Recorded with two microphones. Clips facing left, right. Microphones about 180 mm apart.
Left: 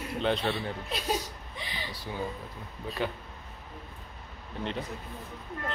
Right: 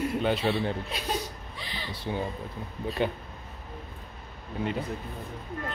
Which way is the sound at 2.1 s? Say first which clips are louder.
Right 6 dB; 25° right (ahead or behind).